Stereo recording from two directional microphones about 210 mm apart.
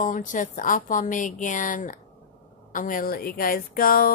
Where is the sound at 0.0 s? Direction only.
40° left (ahead or behind).